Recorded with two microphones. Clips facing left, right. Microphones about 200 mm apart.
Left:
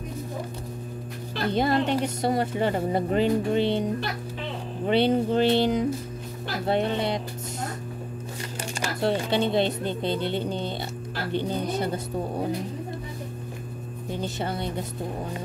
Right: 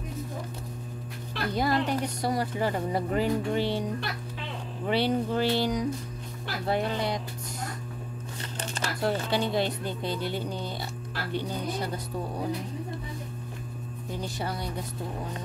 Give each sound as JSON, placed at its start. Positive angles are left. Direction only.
{"t": 1.4, "sound": "speech", "side_deg": 25}
{"t": 9.3, "sound": "speech", "side_deg": 25}
{"t": 14.2, "sound": "speech", "side_deg": 25}